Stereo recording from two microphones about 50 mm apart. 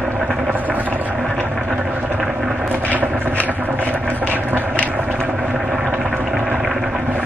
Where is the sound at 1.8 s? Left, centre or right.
Right.